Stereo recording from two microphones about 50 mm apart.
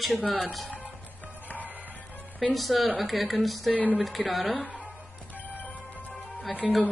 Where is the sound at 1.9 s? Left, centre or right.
Left.